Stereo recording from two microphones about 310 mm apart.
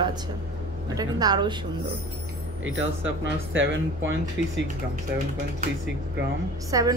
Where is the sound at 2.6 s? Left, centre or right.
Right.